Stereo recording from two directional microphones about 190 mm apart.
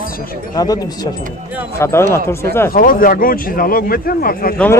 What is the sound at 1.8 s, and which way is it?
Speech, 15° left (ahead or behind).